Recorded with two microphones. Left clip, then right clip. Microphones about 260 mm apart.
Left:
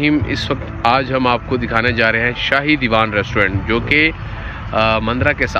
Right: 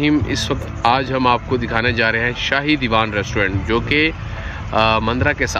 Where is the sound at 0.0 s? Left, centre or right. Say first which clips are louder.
Left 1 dB; centre.